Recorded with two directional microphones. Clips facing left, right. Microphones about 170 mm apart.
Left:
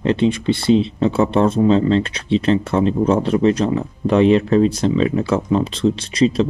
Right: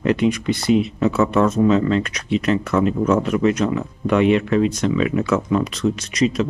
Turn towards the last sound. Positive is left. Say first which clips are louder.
# left 3 dB
turn(degrees=30)  # may be behind; listen again after turning